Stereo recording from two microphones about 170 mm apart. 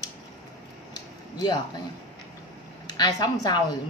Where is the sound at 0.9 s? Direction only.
25° left (ahead or behind).